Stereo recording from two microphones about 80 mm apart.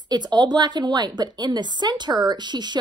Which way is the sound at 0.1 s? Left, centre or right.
Right.